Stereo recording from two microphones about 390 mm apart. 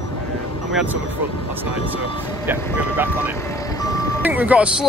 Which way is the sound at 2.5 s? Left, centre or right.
Centre.